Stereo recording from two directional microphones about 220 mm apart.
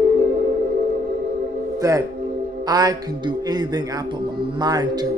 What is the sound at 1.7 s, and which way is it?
A man's voice, 15° right (ahead or behind).